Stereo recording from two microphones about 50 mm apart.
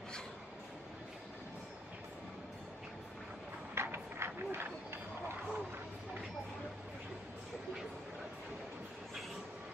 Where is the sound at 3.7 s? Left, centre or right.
Right.